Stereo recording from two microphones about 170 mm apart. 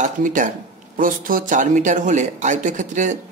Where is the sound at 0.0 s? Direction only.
50° right (ahead or behind).